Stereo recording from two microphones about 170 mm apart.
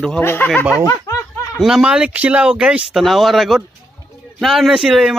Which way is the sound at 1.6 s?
5° right (ahead or behind).